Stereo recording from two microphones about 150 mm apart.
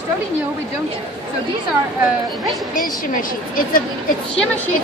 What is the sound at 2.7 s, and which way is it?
Speech, 65° left (ahead or behind).